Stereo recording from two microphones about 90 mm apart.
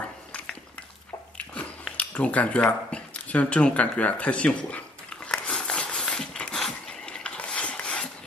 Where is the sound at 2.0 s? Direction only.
15° left (ahead or behind).